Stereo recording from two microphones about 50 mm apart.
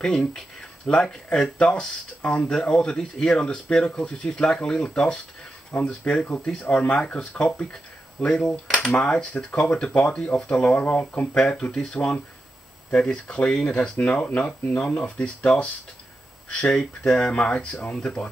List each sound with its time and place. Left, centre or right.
0.0 s speech: centre; by 6.4 s left
7.2 s speech: centre
11.3 s speech: centre
13.6 s speech: centre
13.9 s speech: left
17.9 s speech: centre